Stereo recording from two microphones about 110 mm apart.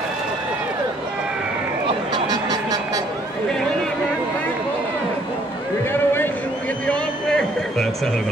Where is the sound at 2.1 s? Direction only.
40° right (ahead or behind).